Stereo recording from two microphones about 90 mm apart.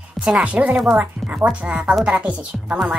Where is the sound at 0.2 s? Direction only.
10° right (ahead or behind).